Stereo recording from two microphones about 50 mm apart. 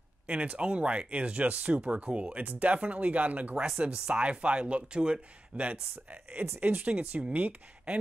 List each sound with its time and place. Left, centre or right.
0.3 s speech: right
3.6 s speech: centre